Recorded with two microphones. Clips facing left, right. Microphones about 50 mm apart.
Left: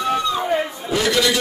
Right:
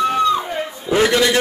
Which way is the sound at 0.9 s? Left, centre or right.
Right.